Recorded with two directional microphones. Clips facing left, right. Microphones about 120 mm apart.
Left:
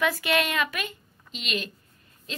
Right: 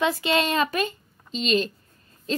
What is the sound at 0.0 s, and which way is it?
A woman's voice, 25° right (ahead or behind).